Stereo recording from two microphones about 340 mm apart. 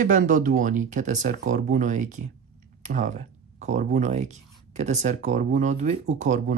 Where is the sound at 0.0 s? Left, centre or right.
Right.